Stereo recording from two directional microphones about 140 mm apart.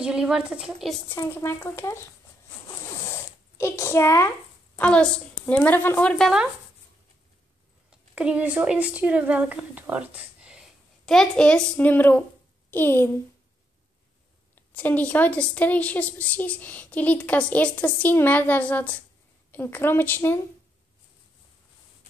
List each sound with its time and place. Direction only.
0.0 s a woman's voice: 5° right (ahead or behind)
1.0 s a woman's voice: 15° left (ahead or behind)
3.1 s zipper: 20° left (ahead or behind)
4.7 s a woman's voice: 10° left (ahead or behind)
7.9 s speech: 10° right (ahead or behind)
11.1 s a woman's voice: 5° left (ahead or behind)
14.5 s a woman's voice: 10° left (ahead or behind)